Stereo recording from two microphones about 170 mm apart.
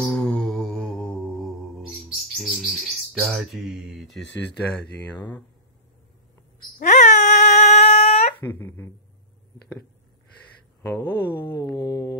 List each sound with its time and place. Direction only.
0.0 s mantra: 5° left (ahead or behind)
2.4 s bird: centre (ahead or behind)
4.2 s speech: 90° left
6.8 s a sound: 45° left (ahead or behind)
8.5 s speech: 10° left (ahead or behind)
10.8 s speech: 15° left (ahead or behind)
11.5 s mantra: 20° left (ahead or behind)